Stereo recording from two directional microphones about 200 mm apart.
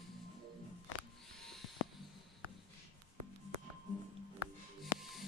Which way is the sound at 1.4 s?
Centre (ahead or behind).